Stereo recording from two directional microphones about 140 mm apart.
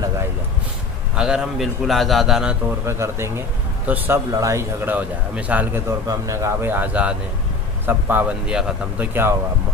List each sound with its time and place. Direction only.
1.1 s a man's voice: 5° right (ahead or behind)
2.8 s a man's voice: 20° right (ahead or behind)